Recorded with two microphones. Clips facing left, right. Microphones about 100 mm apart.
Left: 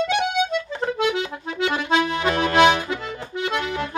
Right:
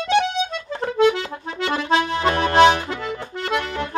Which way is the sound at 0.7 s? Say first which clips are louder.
Right 7 dB; 40° right (ahead or behind).